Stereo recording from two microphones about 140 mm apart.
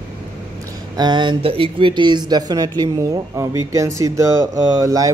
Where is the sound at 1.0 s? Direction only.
35° right (ahead or behind).